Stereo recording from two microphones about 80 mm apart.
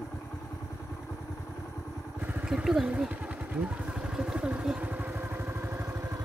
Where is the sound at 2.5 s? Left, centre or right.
Centre; by 6.0 s right.